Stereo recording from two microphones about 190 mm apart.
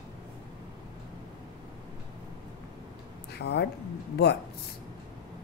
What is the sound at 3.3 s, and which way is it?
Speech, 60° left (ahead or behind).